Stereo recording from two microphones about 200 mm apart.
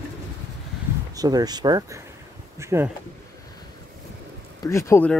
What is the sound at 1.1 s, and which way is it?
Speech, 20° right (ahead or behind).